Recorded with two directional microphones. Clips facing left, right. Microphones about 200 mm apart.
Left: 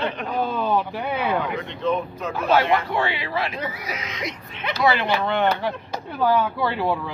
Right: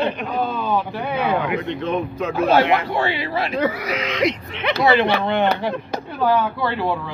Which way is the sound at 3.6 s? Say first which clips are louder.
Right 9 dB; 70° right (ahead or behind).